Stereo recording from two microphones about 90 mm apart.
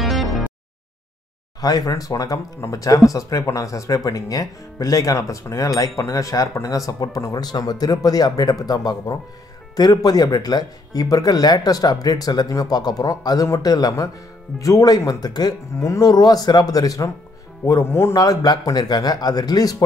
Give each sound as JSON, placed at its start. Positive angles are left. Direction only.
{"t": 0.0, "sound": "a sound", "side_deg": 0}
{"t": 1.6, "sound": "speech", "side_deg": 45}
{"t": 17.6, "sound": "speech", "side_deg": 30}
{"t": 18.1, "sound": "speech", "side_deg": 40}